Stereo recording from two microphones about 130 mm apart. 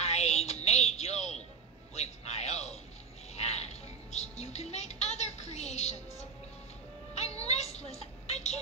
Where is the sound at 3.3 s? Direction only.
55° left (ahead or behind).